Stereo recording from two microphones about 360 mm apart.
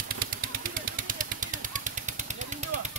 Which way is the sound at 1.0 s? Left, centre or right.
Right.